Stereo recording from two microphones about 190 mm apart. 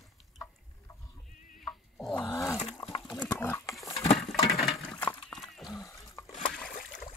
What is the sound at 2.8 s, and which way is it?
Dog, 20° left (ahead or behind).